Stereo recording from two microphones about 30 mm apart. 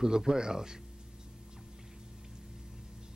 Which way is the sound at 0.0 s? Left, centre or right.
Right.